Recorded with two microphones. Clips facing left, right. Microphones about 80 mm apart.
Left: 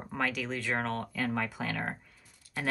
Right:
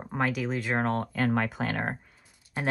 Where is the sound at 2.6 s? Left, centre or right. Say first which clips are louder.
Right 4 dB; right.